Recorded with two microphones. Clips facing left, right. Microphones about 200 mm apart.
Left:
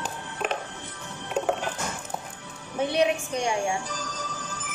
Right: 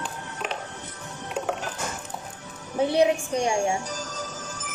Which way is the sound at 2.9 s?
30° right (ahead or behind).